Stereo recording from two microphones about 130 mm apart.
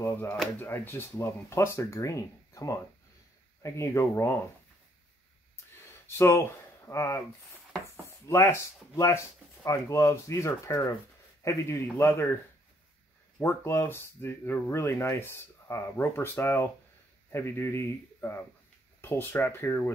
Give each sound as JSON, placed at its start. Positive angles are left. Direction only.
{"t": 0.0, "sound": "speech", "side_deg": 15}
{"t": 5.8, "sound": "a sound", "side_deg": 20}
{"t": 6.9, "sound": "speech", "side_deg": 25}
{"t": 7.9, "sound": "a sound", "side_deg": 20}
{"t": 8.9, "sound": "speech", "side_deg": 20}
{"t": 13.4, "sound": "speech", "side_deg": 20}